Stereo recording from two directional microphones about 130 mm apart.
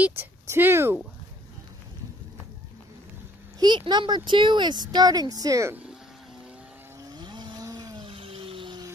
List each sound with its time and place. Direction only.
0.0 s speech: 15° right (ahead or behind)
3.5 s speech: 35° right (ahead or behind)
7.0 s vehicle: 30° right (ahead or behind)